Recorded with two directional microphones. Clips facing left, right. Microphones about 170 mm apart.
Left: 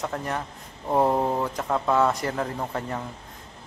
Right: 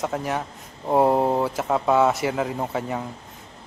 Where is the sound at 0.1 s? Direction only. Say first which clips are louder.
Right 3 dB; 5° right (ahead or behind).